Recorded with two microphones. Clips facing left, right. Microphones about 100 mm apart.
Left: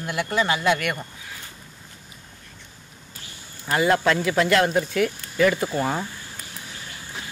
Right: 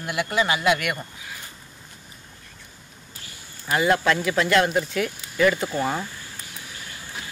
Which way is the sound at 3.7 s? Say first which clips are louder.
Left 1 dB; 30° left (ahead or behind).